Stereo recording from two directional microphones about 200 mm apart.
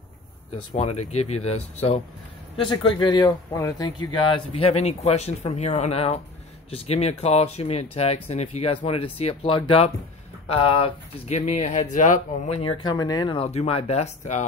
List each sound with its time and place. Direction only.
0.7 s speech: 35° left (ahead or behind)